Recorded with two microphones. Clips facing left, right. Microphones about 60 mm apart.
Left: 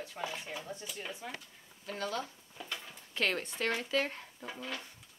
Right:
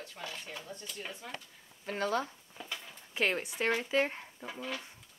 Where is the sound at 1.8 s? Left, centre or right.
Right.